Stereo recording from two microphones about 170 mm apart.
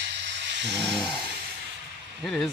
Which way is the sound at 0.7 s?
Centre (ahead or behind).